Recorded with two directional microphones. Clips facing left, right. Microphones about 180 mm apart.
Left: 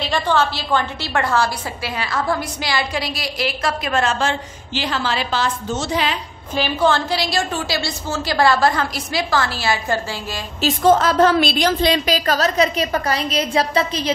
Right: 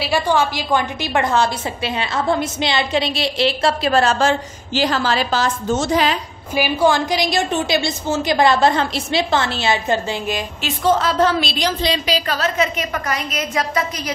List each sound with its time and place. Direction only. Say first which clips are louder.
0.0 s a woman's voice: right 1 dB; 10° right (ahead or behind); by 6.1 s 45° right (ahead or behind)
6.5 s a woman's voice: right 2 dB; 10° right (ahead or behind)
10.6 s a woman's voice: left 4 dB; 45° left (ahead or behind); by 14.1 s 30° left (ahead or behind)